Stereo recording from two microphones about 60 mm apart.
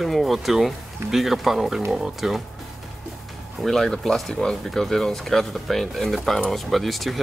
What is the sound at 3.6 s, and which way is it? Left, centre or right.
Speech, centre.